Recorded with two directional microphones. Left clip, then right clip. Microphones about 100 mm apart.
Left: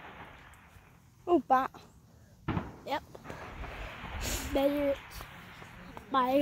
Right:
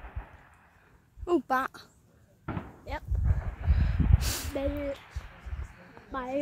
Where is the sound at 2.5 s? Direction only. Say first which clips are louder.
Left 2 dB; centre (ahead or behind).